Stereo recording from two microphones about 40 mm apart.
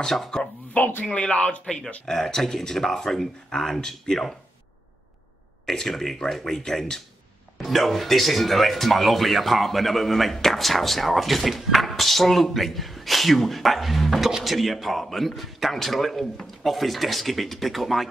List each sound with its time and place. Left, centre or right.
0.0 s speech: centre
0.7 s a man's voice: left
1.0 s speech: left
1.3 s speech: left
2.0 s speech: centre
5.7 s speech: centre